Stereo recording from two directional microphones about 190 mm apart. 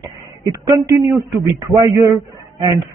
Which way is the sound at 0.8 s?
20° right (ahead or behind).